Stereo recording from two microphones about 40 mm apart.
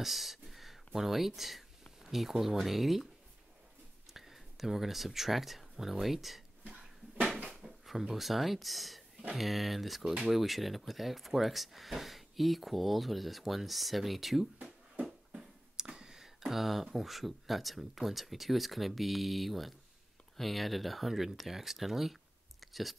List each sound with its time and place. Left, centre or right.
0.0 s speech: centre
4.1 s speech: centre
7.8 s speech: centre
15.0 s a sound: centre
16.4 s speech: centre
22.6 s clicking: centre